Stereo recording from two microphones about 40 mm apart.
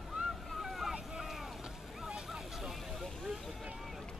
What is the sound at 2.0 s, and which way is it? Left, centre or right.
Vehicle, centre.